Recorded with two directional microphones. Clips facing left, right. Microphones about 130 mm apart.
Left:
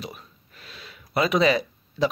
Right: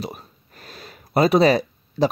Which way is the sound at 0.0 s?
40° right (ahead or behind).